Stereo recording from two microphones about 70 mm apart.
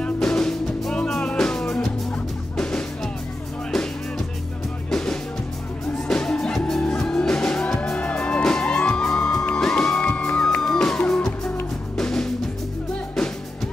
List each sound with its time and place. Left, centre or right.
0.0 s music: centre
4.9 s music: centre
11.0 s music: left
12.0 s music: centre